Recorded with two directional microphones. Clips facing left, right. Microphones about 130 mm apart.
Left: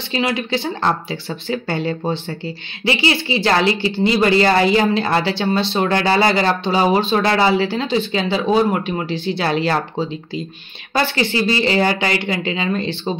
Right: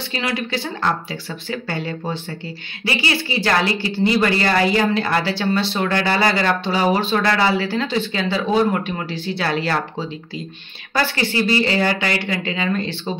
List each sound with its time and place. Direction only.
0.1 s speech: 25° left (ahead or behind)